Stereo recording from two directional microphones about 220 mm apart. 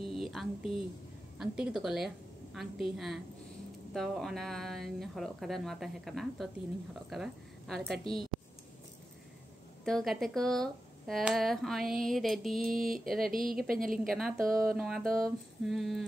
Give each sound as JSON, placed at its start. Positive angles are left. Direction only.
{"t": 0.2, "sound": "a woman's voice", "side_deg": 0}
{"t": 9.8, "sound": "a woman's voice", "side_deg": 0}
{"t": 13.2, "sound": "speech", "side_deg": -40}
{"t": 13.9, "sound": "a woman's voice", "side_deg": 0}